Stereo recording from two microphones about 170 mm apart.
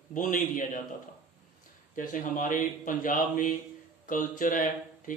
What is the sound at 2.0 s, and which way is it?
Speech, 50° left (ahead or behind).